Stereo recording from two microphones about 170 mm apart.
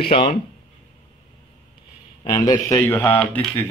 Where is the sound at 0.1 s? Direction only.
30° left (ahead or behind).